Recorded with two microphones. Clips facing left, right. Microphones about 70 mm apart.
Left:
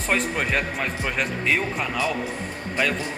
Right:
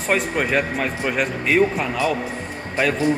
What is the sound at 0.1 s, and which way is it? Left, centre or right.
A man's voice, centre.